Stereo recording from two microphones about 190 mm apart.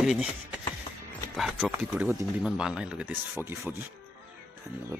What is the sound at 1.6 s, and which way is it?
Speech, 5° right (ahead or behind).